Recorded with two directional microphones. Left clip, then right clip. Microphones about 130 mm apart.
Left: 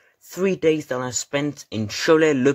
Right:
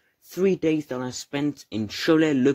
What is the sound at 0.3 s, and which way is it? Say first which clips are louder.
Speech: left 3 dB; 25° right (ahead or behind).